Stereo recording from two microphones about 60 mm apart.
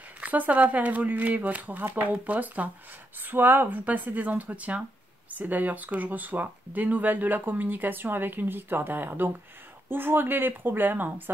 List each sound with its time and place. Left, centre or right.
0.2 s speech: right